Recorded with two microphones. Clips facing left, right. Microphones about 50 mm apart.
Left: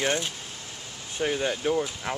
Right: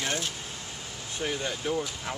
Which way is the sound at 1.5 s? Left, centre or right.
Centre.